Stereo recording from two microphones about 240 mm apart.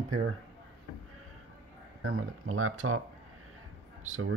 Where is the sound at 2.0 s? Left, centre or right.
Right.